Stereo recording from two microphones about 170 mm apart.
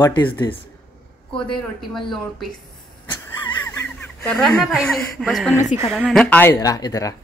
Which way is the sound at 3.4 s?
20° left (ahead or behind).